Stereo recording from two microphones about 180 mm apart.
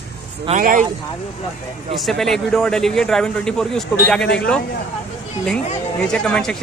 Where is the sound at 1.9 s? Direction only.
Centre (ahead or behind).